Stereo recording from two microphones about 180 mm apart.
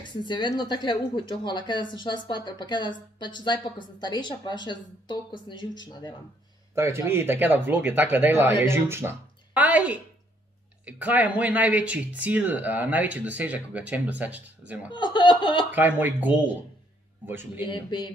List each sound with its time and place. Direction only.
0.2 s speech: 25° left (ahead or behind)
6.7 s speech: 15° right (ahead or behind)
14.9 s speech: 25° left (ahead or behind)
15.7 s speech: 10° right (ahead or behind)
17.6 s speech: 25° left (ahead or behind)